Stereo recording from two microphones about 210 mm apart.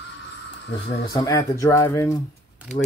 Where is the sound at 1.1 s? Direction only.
15° left (ahead or behind).